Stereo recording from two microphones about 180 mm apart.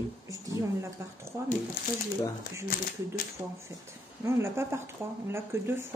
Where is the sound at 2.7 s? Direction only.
55° left (ahead or behind).